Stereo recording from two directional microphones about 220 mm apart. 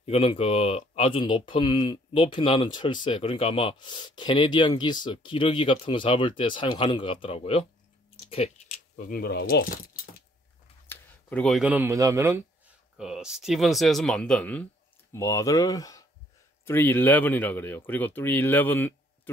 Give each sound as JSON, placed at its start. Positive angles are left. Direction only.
{"t": 0.0, "sound": "speech", "side_deg": 25}
{"t": 10.9, "sound": "speech", "side_deg": 5}
{"t": 12.9, "sound": "speech", "side_deg": 0}